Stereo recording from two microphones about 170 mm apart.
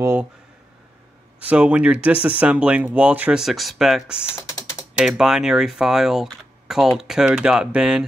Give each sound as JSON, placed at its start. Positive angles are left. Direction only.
{"t": 0.0, "sound": "speech", "side_deg": -10}
{"t": 1.4, "sound": "speech", "side_deg": -10}
{"t": 4.4, "sound": "typing", "side_deg": 20}
{"t": 4.9, "sound": "speech", "side_deg": -5}